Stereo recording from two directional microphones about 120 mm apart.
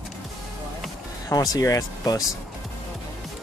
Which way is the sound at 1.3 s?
30° left (ahead or behind).